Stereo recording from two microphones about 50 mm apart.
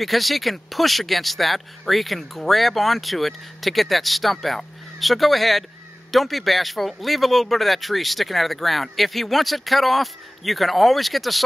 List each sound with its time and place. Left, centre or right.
0.0 s speech: centre